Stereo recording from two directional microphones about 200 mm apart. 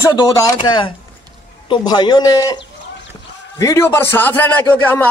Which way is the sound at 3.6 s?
15° left (ahead or behind).